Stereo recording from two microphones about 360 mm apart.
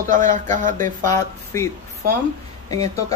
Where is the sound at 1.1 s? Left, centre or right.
Centre.